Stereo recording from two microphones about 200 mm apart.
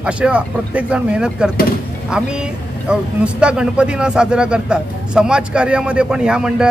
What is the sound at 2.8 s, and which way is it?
A man's voice, 5° right (ahead or behind).